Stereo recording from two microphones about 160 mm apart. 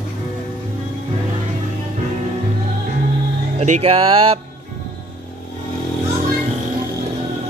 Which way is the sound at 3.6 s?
45° right (ahead or behind).